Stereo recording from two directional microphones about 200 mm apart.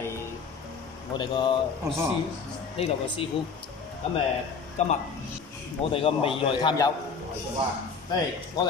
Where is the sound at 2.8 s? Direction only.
30° left (ahead or behind).